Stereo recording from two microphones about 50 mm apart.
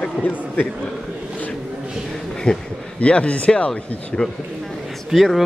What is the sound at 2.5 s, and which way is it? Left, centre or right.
Speech, centre.